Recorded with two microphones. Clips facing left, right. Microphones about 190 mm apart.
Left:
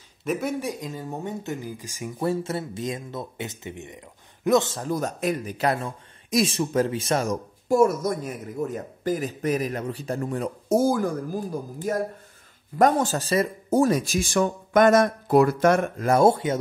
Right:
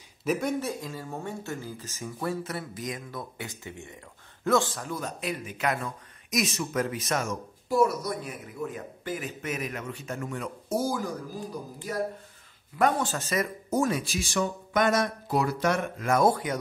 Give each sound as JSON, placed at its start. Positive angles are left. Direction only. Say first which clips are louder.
{"t": 0.2, "sound": "speech", "louder": "left 1 dB", "side_deg": 0}
{"t": 2.1, "sound": "speech", "louder": "left 6 dB", "side_deg": 25}
{"t": 4.8, "sound": "speech", "louder": "left 7 dB", "side_deg": 45}
{"t": 7.6, "sound": "speech", "louder": "left 5 dB", "side_deg": 50}
{"t": 10.8, "sound": "speech", "louder": "left 6 dB", "side_deg": 55}
{"t": 16.1, "sound": "speech", "louder": "left 5 dB", "side_deg": 25}